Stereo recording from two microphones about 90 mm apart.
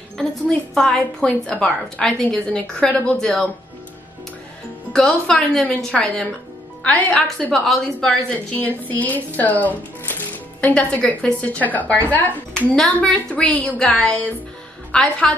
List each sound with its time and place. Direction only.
0.2 s a woman's voice: 5° left (ahead or behind)
4.9 s a woman's voice: 10° left (ahead or behind)
6.8 s a woman's voice: 15° left (ahead or behind)
7.5 s a woman's voice: 5° left (ahead or behind)
8.8 s a woman's voice: 20° left (ahead or behind)
12.7 s a woman's voice: 10° left (ahead or behind)